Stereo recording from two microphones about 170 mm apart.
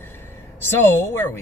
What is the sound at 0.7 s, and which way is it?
Speech, 15° left (ahead or behind).